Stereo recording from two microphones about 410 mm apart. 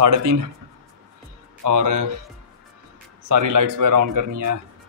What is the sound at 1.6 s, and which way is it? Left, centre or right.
Speech, right.